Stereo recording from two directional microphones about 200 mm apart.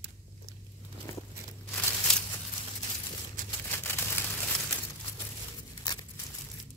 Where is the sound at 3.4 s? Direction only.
40° right (ahead or behind).